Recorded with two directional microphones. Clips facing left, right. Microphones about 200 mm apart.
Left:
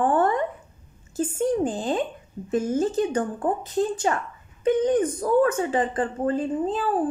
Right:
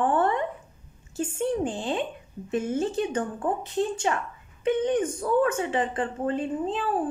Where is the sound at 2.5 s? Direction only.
40° left (ahead or behind).